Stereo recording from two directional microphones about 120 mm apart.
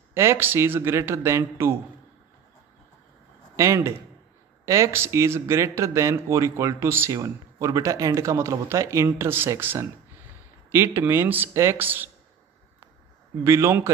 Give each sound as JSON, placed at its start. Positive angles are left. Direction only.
{"t": 0.1, "sound": "speech", "side_deg": -20}
{"t": 3.5, "sound": "speech", "side_deg": -25}
{"t": 13.4, "sound": "speech", "side_deg": -25}